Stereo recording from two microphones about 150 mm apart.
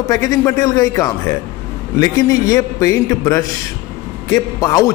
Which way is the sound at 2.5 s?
20° left (ahead or behind).